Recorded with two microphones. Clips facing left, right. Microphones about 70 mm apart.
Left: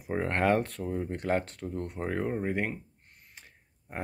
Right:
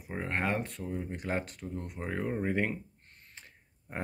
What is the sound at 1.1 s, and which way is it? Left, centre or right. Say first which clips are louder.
Speech: left 5 dB; left.